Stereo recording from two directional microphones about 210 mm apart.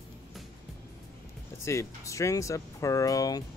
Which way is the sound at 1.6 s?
15° left (ahead or behind).